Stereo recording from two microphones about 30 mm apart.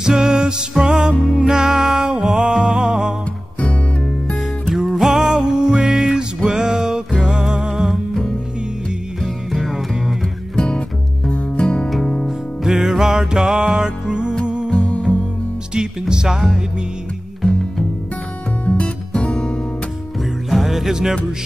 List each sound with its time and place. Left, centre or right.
0.0 s music: right
4.7 s music: centre
7.7 s music: centre
9.2 s music: centre
11.5 s music: left
12.6 s music: centre; by 14.7 s right
14.8 s music: left
15.7 s music: right
17.4 s music: left
19.2 s music: left
20.4 s music: centre